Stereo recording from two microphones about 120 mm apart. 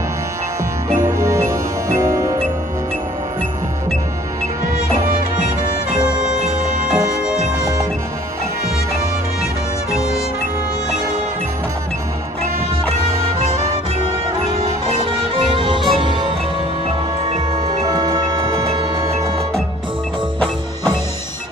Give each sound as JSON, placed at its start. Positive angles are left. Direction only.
{"t": 1.0, "sound": "music", "side_deg": -25}
{"t": 15.0, "sound": "music", "side_deg": -45}
{"t": 17.3, "sound": "music", "side_deg": -60}
{"t": 17.8, "sound": "music", "side_deg": -30}